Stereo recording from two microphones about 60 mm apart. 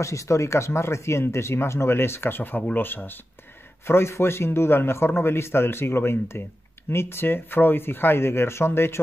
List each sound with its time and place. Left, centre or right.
0.0 s speech: left
3.8 s speech: left